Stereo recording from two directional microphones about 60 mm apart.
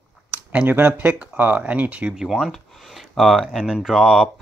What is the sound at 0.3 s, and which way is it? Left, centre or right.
Speech, right.